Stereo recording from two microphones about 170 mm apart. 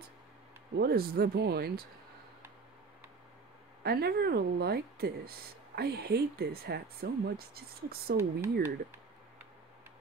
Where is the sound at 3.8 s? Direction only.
65° right (ahead or behind).